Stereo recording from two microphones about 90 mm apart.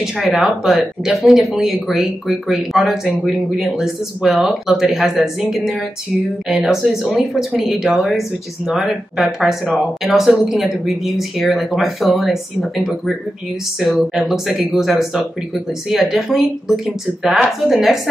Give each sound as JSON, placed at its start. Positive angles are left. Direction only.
{"t": 0.4, "sound": "speech", "side_deg": -5}